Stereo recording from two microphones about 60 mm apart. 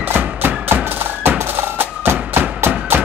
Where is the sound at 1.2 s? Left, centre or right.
Right.